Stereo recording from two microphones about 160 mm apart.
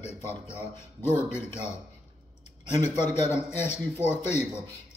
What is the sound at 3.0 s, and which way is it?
Speech, 15° left (ahead or behind).